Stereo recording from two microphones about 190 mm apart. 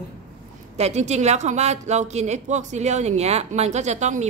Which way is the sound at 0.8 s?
35° right (ahead or behind).